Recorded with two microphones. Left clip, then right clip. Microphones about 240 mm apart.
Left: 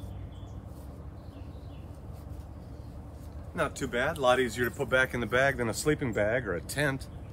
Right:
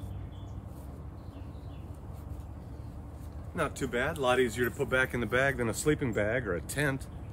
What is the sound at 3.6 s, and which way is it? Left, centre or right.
Speech, centre.